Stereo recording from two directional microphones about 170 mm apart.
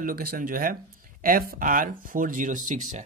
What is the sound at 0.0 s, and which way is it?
Speech, 60° right (ahead or behind).